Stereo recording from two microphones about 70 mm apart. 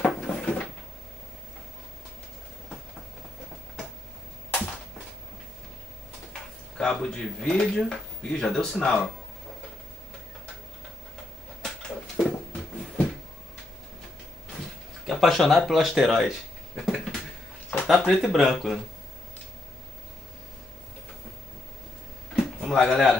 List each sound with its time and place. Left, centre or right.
0.0 s drawer open or close: centre
6.8 s speech: centre
11.6 s a sound: centre
15.0 s speech: centre
17.8 s speech: centre
22.3 s a sound: centre